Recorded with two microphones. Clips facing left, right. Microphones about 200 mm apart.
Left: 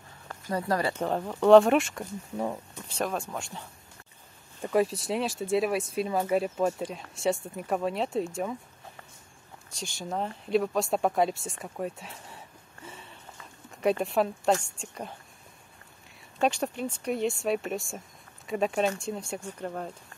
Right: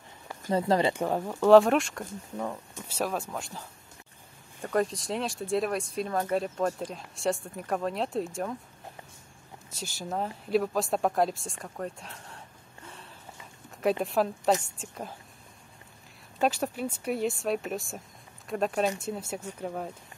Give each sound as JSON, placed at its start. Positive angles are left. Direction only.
{"t": 0.5, "sound": "speech", "side_deg": -25}
{"t": 0.9, "sound": "speech", "side_deg": -10}
{"t": 2.3, "sound": "speech", "side_deg": 15}
{"t": 2.9, "sound": "speech", "side_deg": -5}
{"t": 9.7, "sound": "speech", "side_deg": -5}
{"t": 16.3, "sound": "speech", "side_deg": -5}